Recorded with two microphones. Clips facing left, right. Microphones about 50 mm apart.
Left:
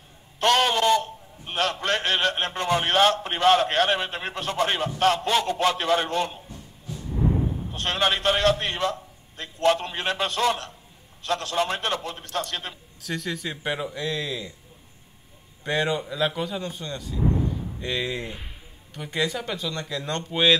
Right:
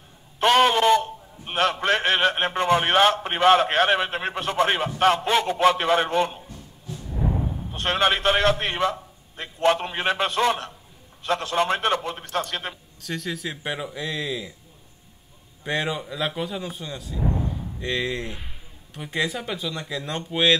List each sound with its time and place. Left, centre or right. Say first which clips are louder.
0.4 s a man's voice: right 3 dB; centre
7.7 s a man's voice: right 3 dB; centre
13.0 s speech: even; centre
15.6 s speech: left 2 dB; centre